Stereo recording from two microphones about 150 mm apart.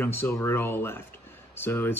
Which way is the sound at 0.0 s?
15° left (ahead or behind).